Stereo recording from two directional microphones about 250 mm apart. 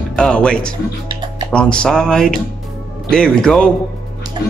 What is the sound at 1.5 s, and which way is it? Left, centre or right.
Speech, centre.